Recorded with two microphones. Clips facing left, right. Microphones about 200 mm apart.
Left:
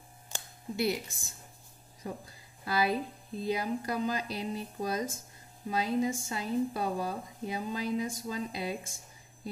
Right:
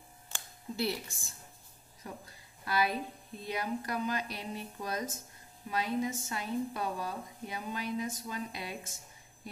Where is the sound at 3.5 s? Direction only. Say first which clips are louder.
Right 2 dB; 25° left (ahead or behind).